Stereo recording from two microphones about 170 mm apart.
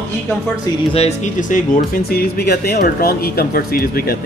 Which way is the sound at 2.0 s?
65° left (ahead or behind).